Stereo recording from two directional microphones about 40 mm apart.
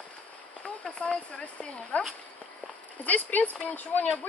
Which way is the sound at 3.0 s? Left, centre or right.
Left.